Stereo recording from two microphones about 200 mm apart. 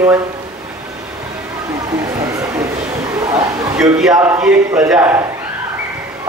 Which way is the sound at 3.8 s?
Centre (ahead or behind).